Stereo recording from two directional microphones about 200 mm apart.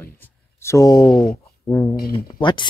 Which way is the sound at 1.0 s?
5° left (ahead or behind).